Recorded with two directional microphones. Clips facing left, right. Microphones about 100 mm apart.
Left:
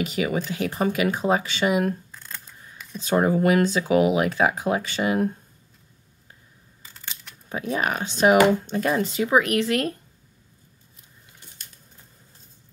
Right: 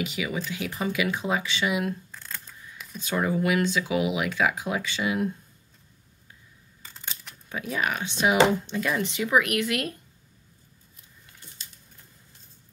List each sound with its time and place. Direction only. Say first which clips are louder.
0.0 s speech: left 5 dB; 45° left (ahead or behind)
2.0 s camera: even; 5° left (ahead or behind)
3.0 s speech: left 6 dB; 35° left (ahead or behind)
6.8 s a sound: right 1 dB; centre (ahead or behind)
7.4 s speech: left 3 dB; 35° left (ahead or behind)